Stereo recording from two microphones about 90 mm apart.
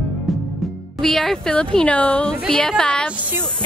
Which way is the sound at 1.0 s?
5° left (ahead or behind).